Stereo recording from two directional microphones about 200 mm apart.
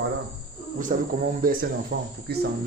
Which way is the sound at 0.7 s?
40° right (ahead or behind).